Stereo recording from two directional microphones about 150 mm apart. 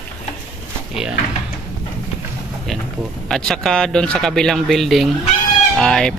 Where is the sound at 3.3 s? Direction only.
5° left (ahead or behind).